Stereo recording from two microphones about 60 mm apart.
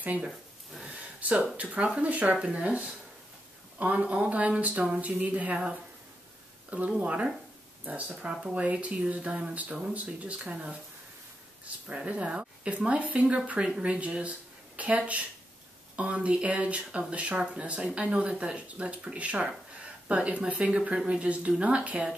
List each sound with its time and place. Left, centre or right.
0.8 s a sound: right
1.6 s speech: right
7.0 s speech: right
8.3 s speech: centre
8.5 s speech: right